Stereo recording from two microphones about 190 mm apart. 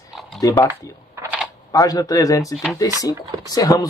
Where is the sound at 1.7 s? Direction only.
20° left (ahead or behind).